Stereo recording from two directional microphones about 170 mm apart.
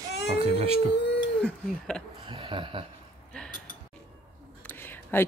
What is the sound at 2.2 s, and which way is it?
Speech, 30° right (ahead or behind).